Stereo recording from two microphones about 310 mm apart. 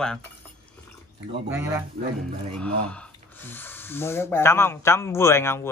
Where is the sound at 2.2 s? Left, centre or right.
Centre.